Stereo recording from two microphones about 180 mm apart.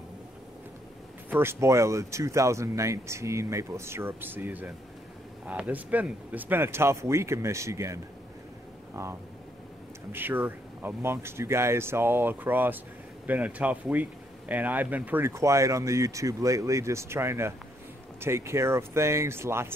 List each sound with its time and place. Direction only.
1.3 s speech: 15° right (ahead or behind)
10.1 s speech: 10° right (ahead or behind)